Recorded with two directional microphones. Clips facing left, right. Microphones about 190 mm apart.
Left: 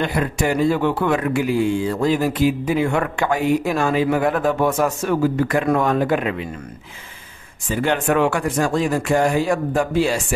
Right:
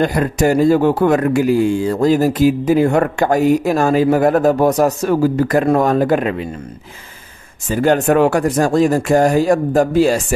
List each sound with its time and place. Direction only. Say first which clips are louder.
0.0 s speech: right 6 dB; 40° right (ahead or behind)
7.6 s speech: right 6 dB; 40° right (ahead or behind)